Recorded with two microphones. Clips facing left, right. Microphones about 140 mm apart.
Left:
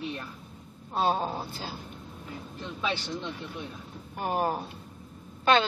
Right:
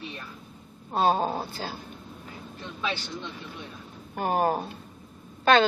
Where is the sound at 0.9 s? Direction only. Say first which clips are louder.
Right 3 dB; 45° right (ahead or behind).